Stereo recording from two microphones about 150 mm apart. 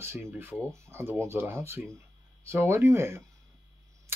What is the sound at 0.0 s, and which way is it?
Speech, 15° right (ahead or behind).